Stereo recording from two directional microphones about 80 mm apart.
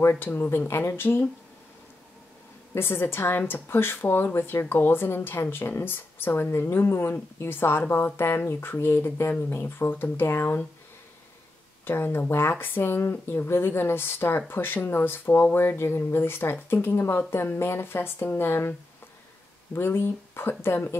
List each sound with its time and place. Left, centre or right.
0.1 s speech: left
2.7 s speech: left
11.8 s speech: left